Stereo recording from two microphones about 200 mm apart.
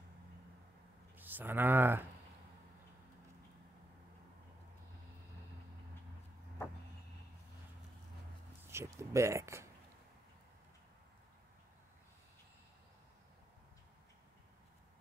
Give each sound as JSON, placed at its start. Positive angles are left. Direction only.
{"t": 1.1, "sound": "speech", "side_deg": -10}
{"t": 8.6, "sound": "speech", "side_deg": -15}